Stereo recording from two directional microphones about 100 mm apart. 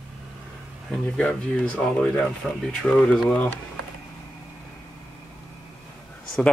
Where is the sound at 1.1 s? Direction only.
10° left (ahead or behind).